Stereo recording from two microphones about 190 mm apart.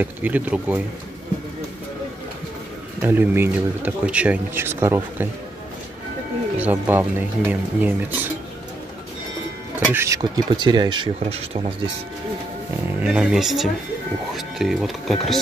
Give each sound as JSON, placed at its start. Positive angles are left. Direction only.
{"t": 0.0, "sound": "speech", "side_deg": -10}
{"t": 3.0, "sound": "speech", "side_deg": -10}
{"t": 6.6, "sound": "speech", "side_deg": -10}
{"t": 9.9, "sound": "speech", "side_deg": -15}
{"t": 13.0, "sound": "speech", "side_deg": -5}